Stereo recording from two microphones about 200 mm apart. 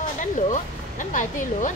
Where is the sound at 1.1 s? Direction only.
40° left (ahead or behind).